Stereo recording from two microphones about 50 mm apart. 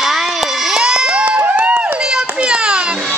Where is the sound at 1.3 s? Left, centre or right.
Right.